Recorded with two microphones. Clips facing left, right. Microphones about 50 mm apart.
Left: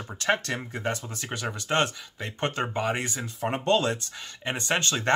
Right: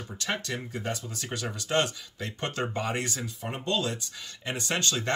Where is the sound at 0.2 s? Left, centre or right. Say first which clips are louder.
Left 6 dB; left.